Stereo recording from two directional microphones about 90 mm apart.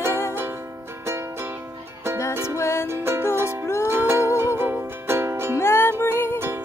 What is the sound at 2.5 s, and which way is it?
Music, 30° left (ahead or behind).